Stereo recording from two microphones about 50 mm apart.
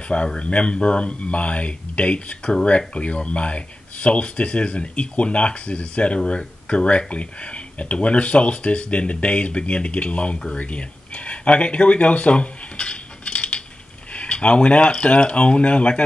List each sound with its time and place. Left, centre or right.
0.1 s speech: left